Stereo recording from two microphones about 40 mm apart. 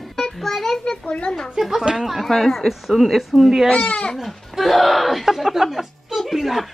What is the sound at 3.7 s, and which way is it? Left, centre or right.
Speech, left.